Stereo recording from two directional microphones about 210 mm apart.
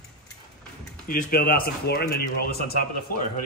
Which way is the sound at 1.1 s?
40° left (ahead or behind).